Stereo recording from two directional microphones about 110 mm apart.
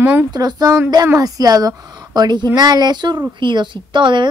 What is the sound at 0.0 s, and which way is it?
Speech, 15° right (ahead or behind).